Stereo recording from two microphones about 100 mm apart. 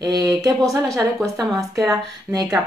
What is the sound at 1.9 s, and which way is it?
Speech, 35° right (ahead or behind).